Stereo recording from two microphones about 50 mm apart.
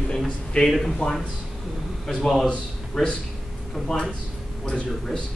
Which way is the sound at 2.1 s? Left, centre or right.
Centre.